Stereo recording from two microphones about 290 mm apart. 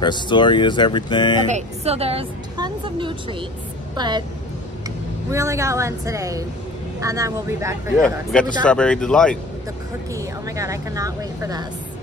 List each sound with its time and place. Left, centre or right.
0.0 s speech: centre
1.5 s a woman's voice: right
5.3 s speech: centre
8.0 s speech: centre
10.1 s speech: centre